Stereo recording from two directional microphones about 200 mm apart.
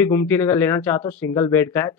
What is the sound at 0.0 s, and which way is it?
Speech, 10° left (ahead or behind).